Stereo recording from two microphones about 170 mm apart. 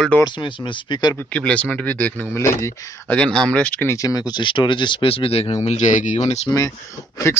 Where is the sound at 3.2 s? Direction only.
5° left (ahead or behind); by 6.5 s 40° left (ahead or behind).